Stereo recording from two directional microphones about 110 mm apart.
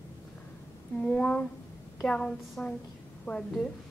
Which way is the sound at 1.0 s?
10° left (ahead or behind).